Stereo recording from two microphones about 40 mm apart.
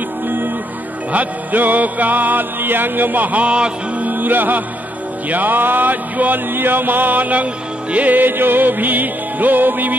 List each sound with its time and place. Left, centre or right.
1.1 s music: right
3.4 s music: right
4.0 s music: right